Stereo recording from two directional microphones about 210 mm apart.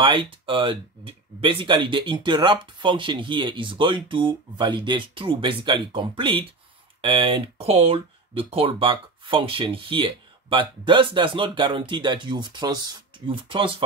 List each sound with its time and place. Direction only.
0.0 s speech: 25° right (ahead or behind)